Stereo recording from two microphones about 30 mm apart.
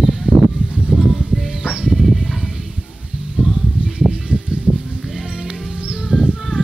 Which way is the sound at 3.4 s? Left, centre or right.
Centre.